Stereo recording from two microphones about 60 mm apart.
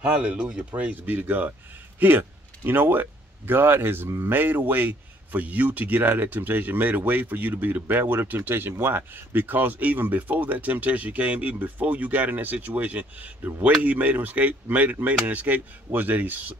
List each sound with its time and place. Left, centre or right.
0.0 s speech: right